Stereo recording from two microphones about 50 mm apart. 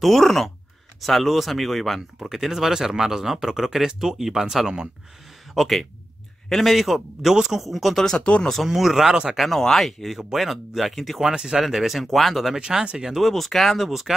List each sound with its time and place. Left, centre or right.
0.0 s speech: centre
5.5 s speech: centre
8.0 s speech: centre
8.6 s speech: centre
9.4 s speech: centre
12.5 s speech: centre
13.1 s speech: centre